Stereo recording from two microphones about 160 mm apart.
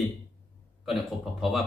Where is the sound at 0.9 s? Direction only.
Centre (ahead or behind).